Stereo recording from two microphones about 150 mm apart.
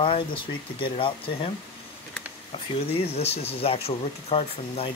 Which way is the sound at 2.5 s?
40° left (ahead or behind).